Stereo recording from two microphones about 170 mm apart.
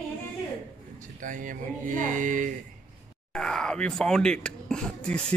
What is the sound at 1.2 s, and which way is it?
Speech, 50° right (ahead or behind).